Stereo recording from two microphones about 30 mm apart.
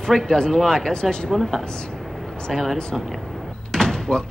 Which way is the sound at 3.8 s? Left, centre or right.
Left.